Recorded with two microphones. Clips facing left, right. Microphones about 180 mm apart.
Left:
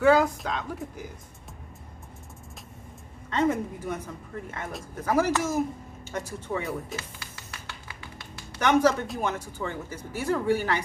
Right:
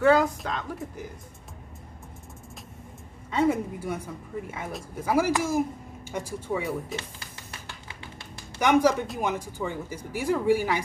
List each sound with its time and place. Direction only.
0.0 s speech: centre (ahead or behind)
3.3 s speech: 10° right (ahead or behind)
7.9 s music: 25° right (ahead or behind)
8.5 s speech: 10° right (ahead or behind)